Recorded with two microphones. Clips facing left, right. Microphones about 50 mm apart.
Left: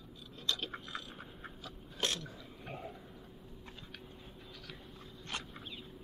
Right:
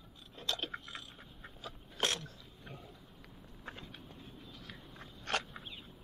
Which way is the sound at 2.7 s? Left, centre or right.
Left.